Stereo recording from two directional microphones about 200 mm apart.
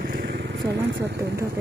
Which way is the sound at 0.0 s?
50° right (ahead or behind).